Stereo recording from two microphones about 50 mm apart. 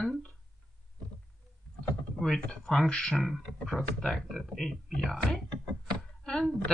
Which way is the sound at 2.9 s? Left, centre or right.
Centre.